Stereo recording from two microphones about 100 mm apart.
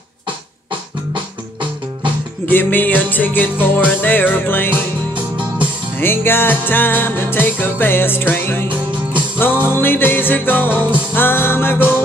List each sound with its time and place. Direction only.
2.4 s music: 20° left (ahead or behind)
5.9 s music: 20° left (ahead or behind)